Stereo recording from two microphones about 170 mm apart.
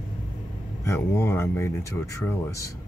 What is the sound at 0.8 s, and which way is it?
Speech, 15° left (ahead or behind).